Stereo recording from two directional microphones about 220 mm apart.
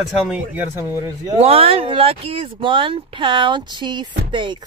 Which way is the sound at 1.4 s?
25° right (ahead or behind).